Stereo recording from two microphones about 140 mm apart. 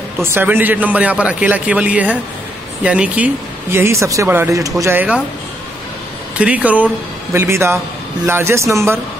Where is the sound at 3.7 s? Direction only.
20° right (ahead or behind).